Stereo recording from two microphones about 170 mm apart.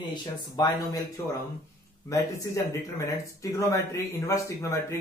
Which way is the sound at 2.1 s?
20° left (ahead or behind).